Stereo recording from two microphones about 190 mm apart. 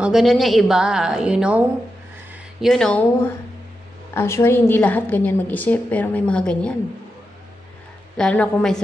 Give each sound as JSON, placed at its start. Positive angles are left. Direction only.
{"t": 0.0, "sound": "a woman's voice", "side_deg": 0}
{"t": 2.6, "sound": "a woman's voice", "side_deg": 0}
{"t": 4.1, "sound": "a woman's voice", "side_deg": 10}
{"t": 8.2, "sound": "a woman's voice", "side_deg": 5}